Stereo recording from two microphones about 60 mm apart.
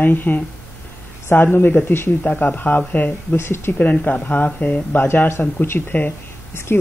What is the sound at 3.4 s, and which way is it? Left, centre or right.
Speech, left.